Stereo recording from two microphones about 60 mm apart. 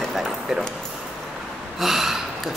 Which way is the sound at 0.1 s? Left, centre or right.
Centre.